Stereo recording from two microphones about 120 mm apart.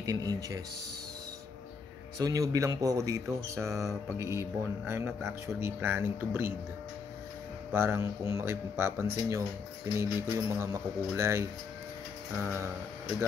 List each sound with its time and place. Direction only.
0.0 s speech: 30° right (ahead or behind)
2.1 s speech: 30° right (ahead or behind)
7.7 s speech: 20° right (ahead or behind)